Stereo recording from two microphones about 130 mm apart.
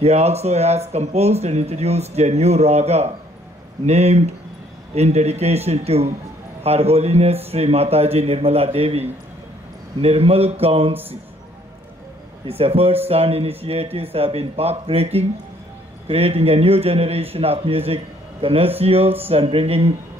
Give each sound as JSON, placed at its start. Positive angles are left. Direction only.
{"t": 0.0, "sound": "a man's voice", "side_deg": -55}
{"t": 12.4, "sound": "a man's voice", "side_deg": -50}